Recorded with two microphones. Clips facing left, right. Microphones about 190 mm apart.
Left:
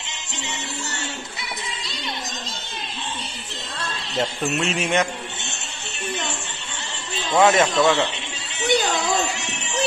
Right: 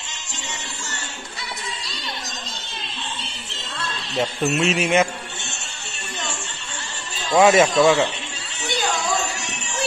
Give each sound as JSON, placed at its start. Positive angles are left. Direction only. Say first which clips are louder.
{"t": 4.1, "sound": "speech", "louder": "right 2 dB", "side_deg": 0}
{"t": 7.3, "sound": "speech", "louder": "right 2 dB", "side_deg": -20}